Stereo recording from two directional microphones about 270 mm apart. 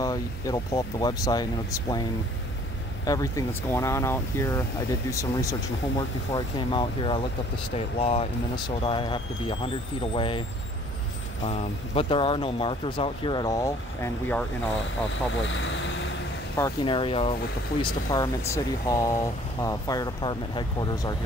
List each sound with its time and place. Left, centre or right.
0.0 s speech: centre
3.1 s speech: centre
11.4 s speech: left
15.5 s speech: left
16.5 s speech: centre